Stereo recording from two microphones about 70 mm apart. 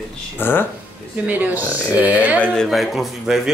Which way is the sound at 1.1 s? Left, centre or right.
Right.